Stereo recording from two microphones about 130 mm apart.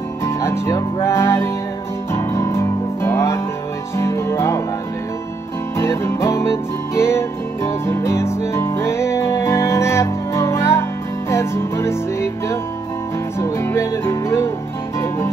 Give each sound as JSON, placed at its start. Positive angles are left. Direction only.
{"t": 0.2, "sound": "music", "side_deg": 20}
{"t": 5.8, "sound": "music", "side_deg": 20}